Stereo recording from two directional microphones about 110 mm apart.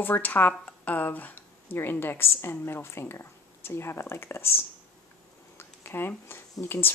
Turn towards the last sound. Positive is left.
turn(degrees=20)  # may be behind; listen again after turning